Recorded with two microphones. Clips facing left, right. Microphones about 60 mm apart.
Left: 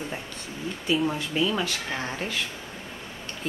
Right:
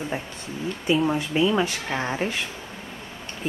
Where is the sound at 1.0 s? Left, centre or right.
Centre.